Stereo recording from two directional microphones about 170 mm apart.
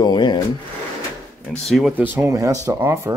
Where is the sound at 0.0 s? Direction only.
25° left (ahead or behind).